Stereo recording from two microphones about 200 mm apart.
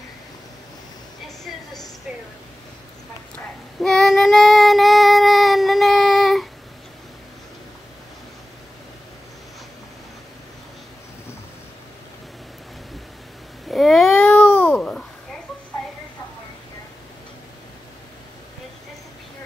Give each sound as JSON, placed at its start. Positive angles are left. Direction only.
{"t": 2.1, "sound": "a sound", "side_deg": -5}
{"t": 3.3, "sound": "child singing", "side_deg": 0}
{"t": 13.7, "sound": "cat", "side_deg": 0}
{"t": 14.2, "sound": "babbling", "side_deg": 10}